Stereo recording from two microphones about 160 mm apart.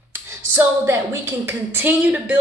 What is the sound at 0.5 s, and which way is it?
Speech, 15° right (ahead or behind).